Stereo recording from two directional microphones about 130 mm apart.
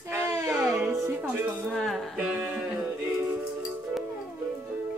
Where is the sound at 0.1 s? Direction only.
25° right (ahead or behind).